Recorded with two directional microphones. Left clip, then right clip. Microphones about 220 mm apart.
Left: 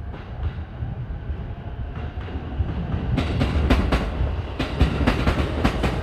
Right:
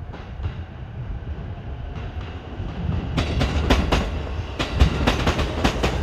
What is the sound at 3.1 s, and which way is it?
Train, 35° right (ahead or behind).